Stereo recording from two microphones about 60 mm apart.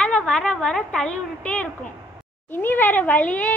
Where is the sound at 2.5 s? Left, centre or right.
Left.